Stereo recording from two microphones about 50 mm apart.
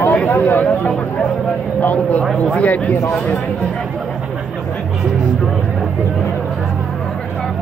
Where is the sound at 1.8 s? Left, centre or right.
Left.